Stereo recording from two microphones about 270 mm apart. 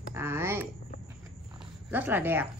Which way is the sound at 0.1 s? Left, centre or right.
Centre.